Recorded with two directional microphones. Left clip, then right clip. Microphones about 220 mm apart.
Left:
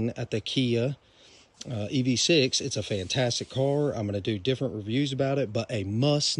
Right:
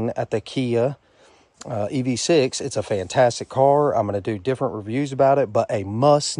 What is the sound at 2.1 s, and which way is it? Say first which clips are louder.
Speech: right 4 dB; 25° right (ahead or behind).